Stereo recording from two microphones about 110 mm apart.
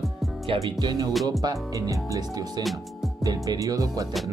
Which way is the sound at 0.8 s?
40° right (ahead or behind).